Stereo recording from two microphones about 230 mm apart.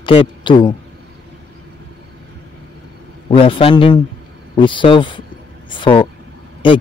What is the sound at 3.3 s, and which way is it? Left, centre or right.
A man's voice, left.